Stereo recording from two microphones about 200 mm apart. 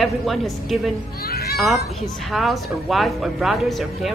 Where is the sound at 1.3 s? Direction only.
50° left (ahead or behind).